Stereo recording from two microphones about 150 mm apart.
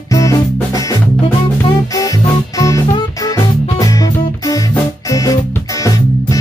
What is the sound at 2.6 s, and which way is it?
Music, 25° left (ahead or behind).